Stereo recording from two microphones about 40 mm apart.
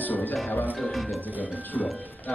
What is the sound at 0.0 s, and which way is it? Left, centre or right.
Music, left.